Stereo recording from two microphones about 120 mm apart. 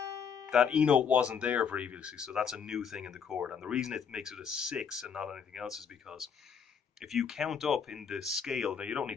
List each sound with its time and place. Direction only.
0.0 s music: 30° right (ahead or behind)
0.5 s speech: 5° right (ahead or behind)